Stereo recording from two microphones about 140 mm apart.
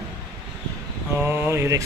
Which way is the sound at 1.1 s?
15° right (ahead or behind).